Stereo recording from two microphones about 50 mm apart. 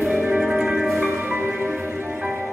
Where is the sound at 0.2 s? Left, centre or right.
Right.